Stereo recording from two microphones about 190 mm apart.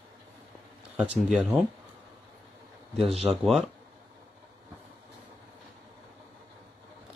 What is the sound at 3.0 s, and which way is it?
Speech, 35° right (ahead or behind).